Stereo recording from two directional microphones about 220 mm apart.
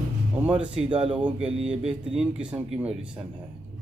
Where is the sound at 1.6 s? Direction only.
30° right (ahead or behind).